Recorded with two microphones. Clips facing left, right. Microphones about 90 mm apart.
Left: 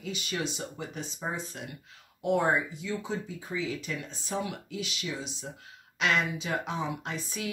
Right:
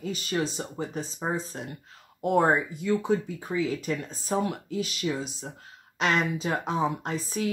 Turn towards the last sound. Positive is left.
turn(degrees=-40)  # may be behind; listen again after turning